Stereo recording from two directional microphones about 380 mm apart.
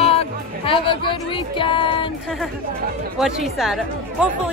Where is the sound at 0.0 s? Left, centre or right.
Centre.